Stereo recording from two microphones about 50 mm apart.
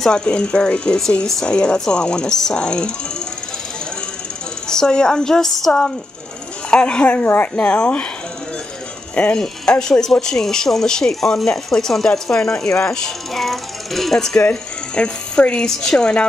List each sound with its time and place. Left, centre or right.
0.0 s speech: centre
4.6 s speech: centre
6.7 s speech: left
9.1 s speech: left
9.4 s speech: centre
14.3 s speech: left